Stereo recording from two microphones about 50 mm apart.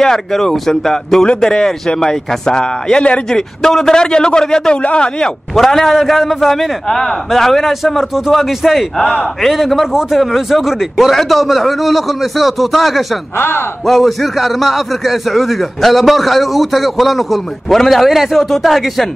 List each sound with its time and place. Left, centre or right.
0.0 s a man's voice: centre
3.3 s a man's voice: centre
5.5 s a man's voice: centre
13.4 s speech: left
13.8 s a man's voice: centre